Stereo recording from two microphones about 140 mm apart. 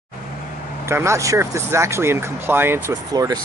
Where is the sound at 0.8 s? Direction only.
20° right (ahead or behind).